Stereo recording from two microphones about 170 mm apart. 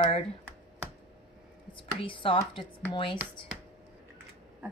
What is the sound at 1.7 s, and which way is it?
Speech, 30° left (ahead or behind).